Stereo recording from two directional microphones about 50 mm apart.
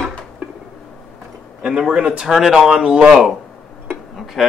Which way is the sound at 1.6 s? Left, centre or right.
Centre.